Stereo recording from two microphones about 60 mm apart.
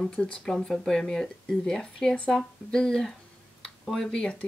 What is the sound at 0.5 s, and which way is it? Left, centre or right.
Speech, centre.